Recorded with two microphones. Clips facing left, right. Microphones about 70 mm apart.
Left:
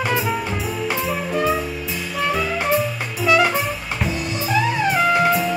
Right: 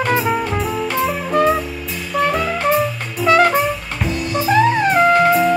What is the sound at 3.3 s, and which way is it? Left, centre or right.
Music, right.